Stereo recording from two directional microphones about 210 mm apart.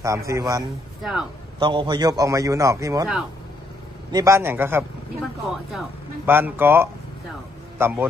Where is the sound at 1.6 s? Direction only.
20° right (ahead or behind).